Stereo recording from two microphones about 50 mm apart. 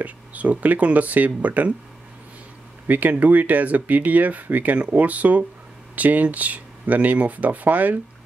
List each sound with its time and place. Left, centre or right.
0.0 s speech: right
2.9 s speech: right